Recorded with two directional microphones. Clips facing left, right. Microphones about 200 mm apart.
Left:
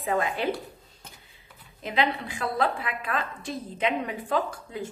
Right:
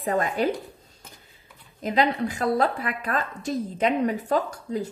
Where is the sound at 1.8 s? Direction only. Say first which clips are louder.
Right 4 dB; 40° right (ahead or behind).